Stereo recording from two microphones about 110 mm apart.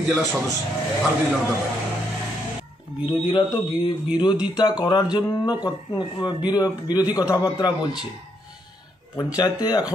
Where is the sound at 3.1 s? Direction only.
45° left (ahead or behind).